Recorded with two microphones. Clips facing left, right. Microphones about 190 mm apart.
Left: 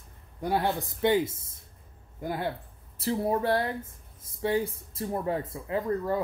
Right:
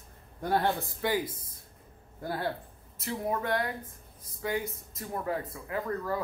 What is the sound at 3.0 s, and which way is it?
Speech, 30° left (ahead or behind).